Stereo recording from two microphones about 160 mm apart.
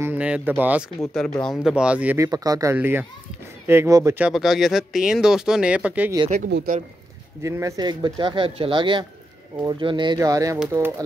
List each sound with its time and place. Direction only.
0.0 s speech: 10° right (ahead or behind)
1.0 s speech: 5° left (ahead or behind); by 4.2 s 20° right (ahead or behind)
4.2 s speech: centre (ahead or behind)
6.5 s speech: 75° right (ahead or behind)
7.4 s speech: 20° right (ahead or behind)